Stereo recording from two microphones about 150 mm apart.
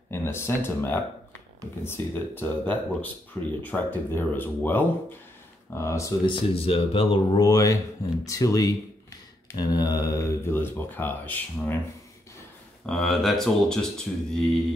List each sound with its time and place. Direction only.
0.1 s speech: 15° left (ahead or behind)
6.2 s speech: 35° left (ahead or behind); by 11.7 s 10° left (ahead or behind)
12.8 s speech: centre (ahead or behind)